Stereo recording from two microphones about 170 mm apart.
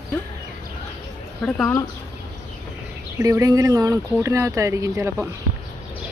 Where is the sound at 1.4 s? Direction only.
5° left (ahead or behind).